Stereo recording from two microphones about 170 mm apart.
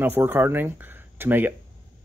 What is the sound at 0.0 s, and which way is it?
Speech, 10° right (ahead or behind).